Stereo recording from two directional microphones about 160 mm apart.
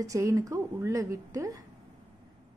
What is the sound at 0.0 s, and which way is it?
A woman's voice, 20° right (ahead or behind).